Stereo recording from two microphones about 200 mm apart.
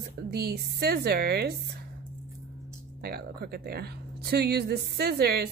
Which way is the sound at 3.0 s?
50° right (ahead or behind).